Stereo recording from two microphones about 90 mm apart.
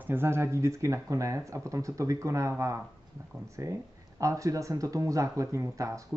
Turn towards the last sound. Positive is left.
turn(degrees=-35)  # may be behind; listen again after turning